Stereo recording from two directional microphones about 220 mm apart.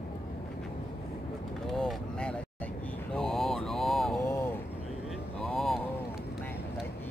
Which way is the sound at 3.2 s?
Centre (ahead or behind).